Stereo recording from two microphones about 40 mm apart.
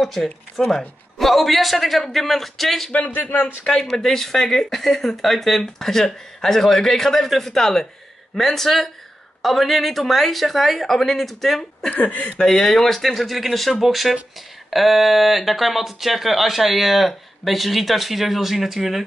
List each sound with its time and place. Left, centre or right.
0.0 s speech: centre
2.9 s a man's voice: left
3.7 s speech: centre
11.9 s speech: left
12.4 s speech: centre